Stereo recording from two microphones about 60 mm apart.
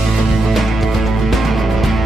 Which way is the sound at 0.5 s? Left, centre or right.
Centre.